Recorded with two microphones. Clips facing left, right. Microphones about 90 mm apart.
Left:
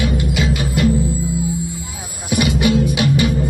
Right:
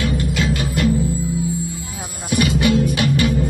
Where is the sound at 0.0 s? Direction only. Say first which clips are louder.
Left 1 dB; 15° left (ahead or behind).